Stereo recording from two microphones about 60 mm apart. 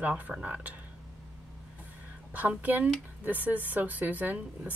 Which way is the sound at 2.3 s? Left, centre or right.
Right.